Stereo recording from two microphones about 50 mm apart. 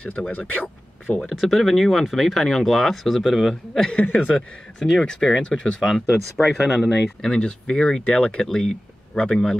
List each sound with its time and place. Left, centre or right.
0.3 s speech: left
1.3 s speech: centre
3.9 s speech: left
4.7 s speech: centre
5.8 s speech: centre